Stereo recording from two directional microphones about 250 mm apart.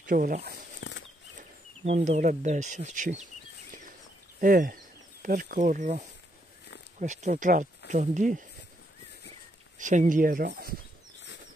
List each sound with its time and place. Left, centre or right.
0.0 s speech: right
0.8 s bird flight: left
1.9 s speech: right
4.4 s speech: right
9.8 s speech: right